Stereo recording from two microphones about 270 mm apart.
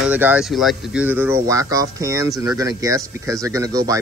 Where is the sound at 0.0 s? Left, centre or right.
Centre.